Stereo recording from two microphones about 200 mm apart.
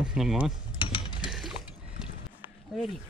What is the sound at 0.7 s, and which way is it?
Mechanisms, 25° left (ahead or behind).